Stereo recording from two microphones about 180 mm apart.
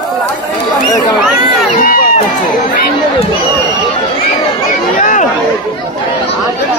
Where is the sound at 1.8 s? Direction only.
50° left (ahead or behind).